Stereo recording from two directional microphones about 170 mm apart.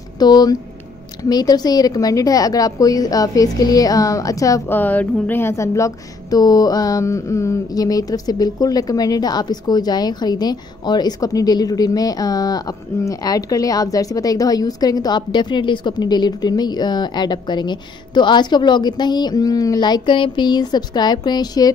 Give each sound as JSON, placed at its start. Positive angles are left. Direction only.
{"t": 0.2, "sound": "a woman's voice", "side_deg": 25}